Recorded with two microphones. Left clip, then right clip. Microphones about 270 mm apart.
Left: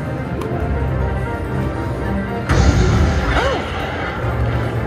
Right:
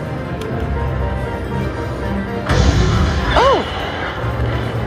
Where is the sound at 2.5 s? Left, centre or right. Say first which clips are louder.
Right 1 dB; right.